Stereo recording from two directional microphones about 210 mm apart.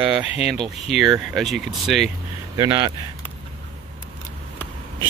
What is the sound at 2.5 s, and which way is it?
Speech, 15° right (ahead or behind).